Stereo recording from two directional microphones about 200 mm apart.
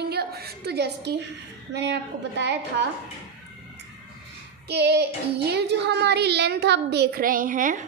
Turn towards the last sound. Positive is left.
turn(degrees=-40)  # may be behind; listen again after turning